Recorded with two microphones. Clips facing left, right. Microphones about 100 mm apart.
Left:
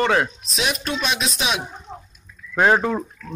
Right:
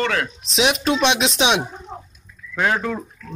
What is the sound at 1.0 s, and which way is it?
Speech, 80° right.